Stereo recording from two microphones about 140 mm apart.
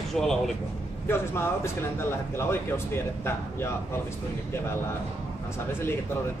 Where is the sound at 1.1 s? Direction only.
15° left (ahead or behind).